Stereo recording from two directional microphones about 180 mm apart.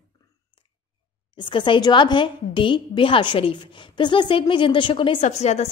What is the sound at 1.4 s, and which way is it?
A woman's voice, 25° left (ahead or behind).